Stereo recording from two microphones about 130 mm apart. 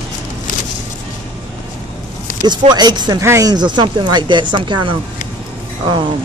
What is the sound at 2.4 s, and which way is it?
Speech, 35° right (ahead or behind).